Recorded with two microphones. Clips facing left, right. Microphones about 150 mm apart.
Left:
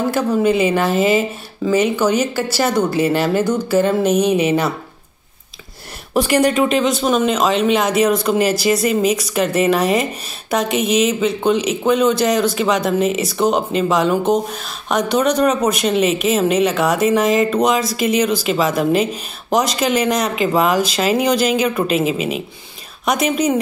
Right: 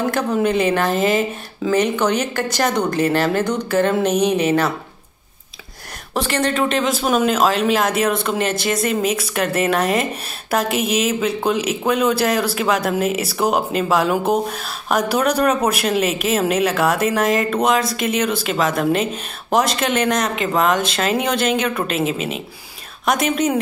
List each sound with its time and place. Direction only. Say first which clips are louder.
0.1 s speech: left 3 dB; 5° left (ahead or behind)
6.1 s speech: left 5 dB; 10° left (ahead or behind)